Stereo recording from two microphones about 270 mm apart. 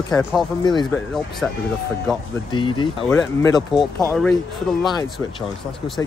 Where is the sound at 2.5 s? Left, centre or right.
Centre.